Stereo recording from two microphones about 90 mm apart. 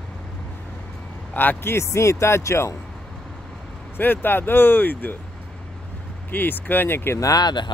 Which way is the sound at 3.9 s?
25° left (ahead or behind).